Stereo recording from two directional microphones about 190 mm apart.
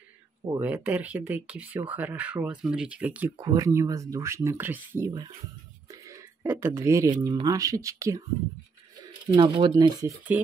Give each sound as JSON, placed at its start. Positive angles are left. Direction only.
{"t": 0.5, "sound": "speech", "side_deg": -10}
{"t": 3.3, "sound": "speech", "side_deg": -20}
{"t": 9.3, "sound": "speech", "side_deg": -20}